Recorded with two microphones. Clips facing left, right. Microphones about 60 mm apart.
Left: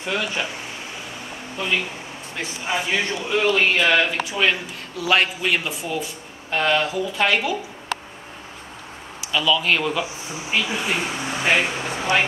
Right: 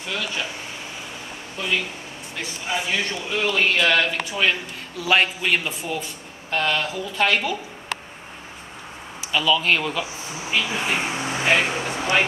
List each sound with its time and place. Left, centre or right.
0.0 s speech: centre
2.3 s speech: centre
4.4 s a man's voice: centre
9.2 s a man's voice: centre